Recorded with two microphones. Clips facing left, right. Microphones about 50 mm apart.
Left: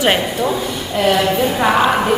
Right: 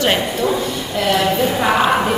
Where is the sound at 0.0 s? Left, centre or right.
Centre.